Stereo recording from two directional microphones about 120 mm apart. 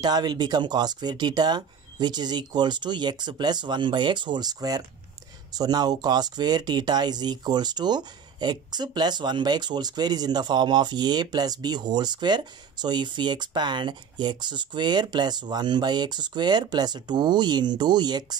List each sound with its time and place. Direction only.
0.0 s speech: 35° right (ahead or behind)